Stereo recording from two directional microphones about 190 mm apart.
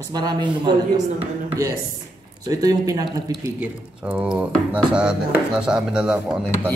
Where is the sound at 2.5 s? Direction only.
20° right (ahead or behind).